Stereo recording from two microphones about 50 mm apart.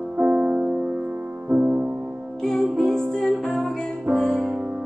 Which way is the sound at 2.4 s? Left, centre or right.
Centre.